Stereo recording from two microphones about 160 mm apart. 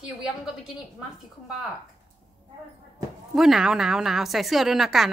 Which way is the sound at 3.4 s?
Centre (ahead or behind).